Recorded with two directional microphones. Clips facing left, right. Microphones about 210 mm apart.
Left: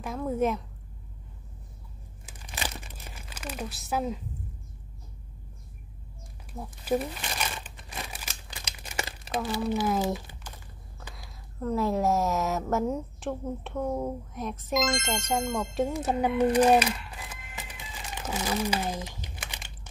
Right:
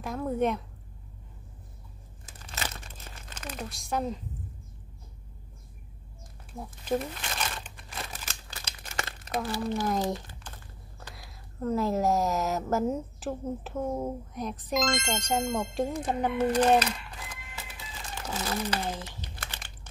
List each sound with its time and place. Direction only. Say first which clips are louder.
0.0 s speech: even; centre (ahead or behind)
2.4 s crumpling: left 1 dB; 15° left (ahead or behind)
6.8 s speech: left 2 dB; 10° left (ahead or behind)
7.7 s crumpling: even; 10° left (ahead or behind)
9.6 s speech: left 3 dB; 5° left (ahead or behind)
17.6 s crumpling: left 2 dB; 15° left (ahead or behind)